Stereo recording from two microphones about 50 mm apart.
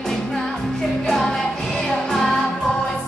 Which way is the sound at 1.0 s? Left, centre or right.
Centre.